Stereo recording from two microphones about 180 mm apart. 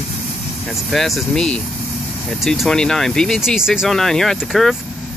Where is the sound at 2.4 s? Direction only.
5° left (ahead or behind).